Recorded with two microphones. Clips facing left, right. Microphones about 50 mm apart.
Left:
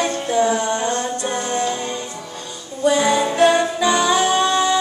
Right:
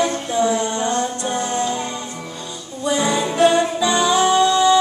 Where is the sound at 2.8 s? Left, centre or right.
Left.